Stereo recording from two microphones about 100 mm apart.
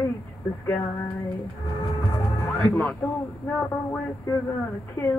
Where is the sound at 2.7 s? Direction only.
15° left (ahead or behind).